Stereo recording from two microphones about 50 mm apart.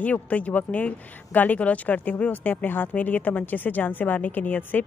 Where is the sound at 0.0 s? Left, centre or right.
Left.